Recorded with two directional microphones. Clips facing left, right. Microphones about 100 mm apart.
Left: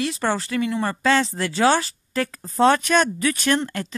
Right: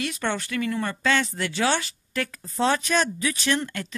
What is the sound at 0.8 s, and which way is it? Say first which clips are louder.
Speech: left 6 dB; 35° left (ahead or behind).